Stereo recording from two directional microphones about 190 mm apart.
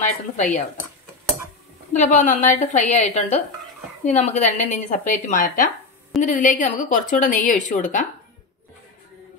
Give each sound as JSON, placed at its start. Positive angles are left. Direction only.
{"t": 0.0, "sound": "a woman's voice", "side_deg": 40}
{"t": 2.0, "sound": "a woman's voice", "side_deg": 40}